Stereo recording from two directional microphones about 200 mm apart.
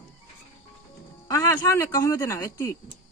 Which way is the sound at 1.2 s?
15° left (ahead or behind).